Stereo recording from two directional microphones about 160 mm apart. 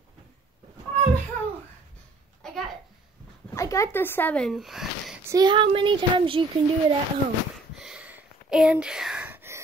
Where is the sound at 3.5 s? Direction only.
20° left (ahead or behind); by 5.2 s centre (ahead or behind).